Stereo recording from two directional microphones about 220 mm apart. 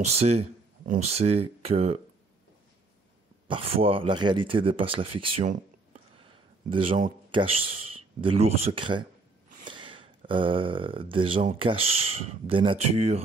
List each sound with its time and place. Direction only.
0.0 s speech: 30° right (ahead or behind)
3.4 s speech: 25° right (ahead or behind)
5.4 s a sound: 30° right (ahead or behind)
6.7 s speech: 25° right (ahead or behind)